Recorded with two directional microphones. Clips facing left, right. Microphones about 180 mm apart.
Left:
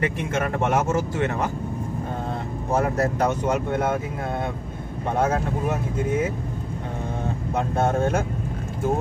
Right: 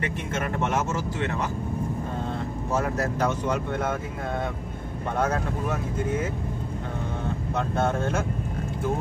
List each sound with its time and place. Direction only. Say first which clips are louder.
0.4 s speech: left 4 dB; 50° left (ahead or behind)
2.7 s speech: left 5 dB; 55° left (ahead or behind)